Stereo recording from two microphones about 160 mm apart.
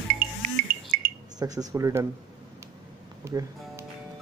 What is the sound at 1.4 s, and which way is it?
Speech, 20° right (ahead or behind).